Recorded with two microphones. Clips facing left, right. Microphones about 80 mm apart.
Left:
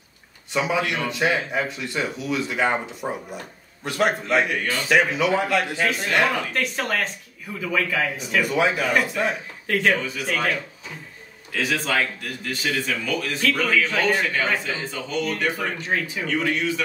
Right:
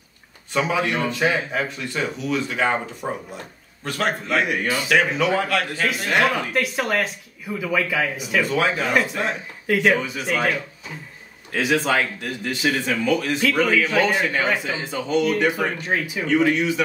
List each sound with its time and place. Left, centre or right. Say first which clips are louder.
0.5 s speech: right 1 dB; centre
3.8 s a man's voice: left 2 dB; centre
4.5 s speech: right 2 dB; centre
4.8 s speech: left 1 dB; centre
5.5 s a man's voice: left 1 dB; centre
6.2 s speech: right 2 dB; centre
8.4 s a man's voice: even; centre
9.7 s speech: right 2 dB; centre
11.5 s speech: right 3 dB; right